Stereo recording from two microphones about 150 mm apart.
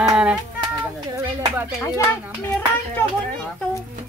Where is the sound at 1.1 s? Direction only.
20° right (ahead or behind).